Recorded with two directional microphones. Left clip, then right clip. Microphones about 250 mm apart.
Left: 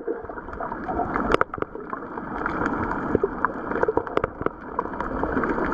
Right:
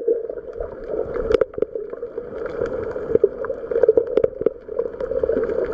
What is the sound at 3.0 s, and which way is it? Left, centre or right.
Boat, centre.